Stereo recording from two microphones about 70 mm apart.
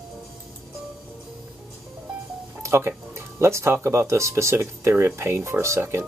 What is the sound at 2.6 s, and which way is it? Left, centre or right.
Speech, right.